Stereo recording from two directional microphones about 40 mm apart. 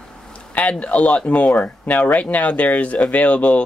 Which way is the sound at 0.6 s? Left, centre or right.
Left.